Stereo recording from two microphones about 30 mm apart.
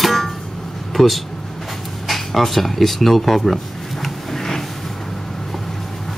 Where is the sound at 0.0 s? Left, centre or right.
Centre.